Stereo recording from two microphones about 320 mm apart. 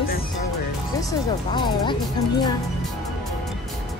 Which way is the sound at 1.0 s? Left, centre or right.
Centre.